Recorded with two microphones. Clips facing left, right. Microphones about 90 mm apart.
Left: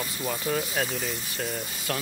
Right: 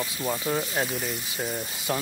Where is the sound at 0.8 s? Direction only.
5° right (ahead or behind).